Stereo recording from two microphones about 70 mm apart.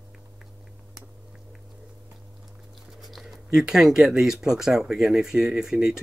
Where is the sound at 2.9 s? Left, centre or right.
Centre.